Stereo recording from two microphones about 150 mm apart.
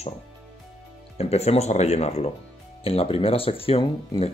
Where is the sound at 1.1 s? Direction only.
45° left (ahead or behind).